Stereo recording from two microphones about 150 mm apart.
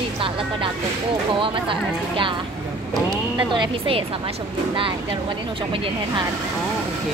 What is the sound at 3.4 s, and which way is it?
Speech, 35° right (ahead or behind).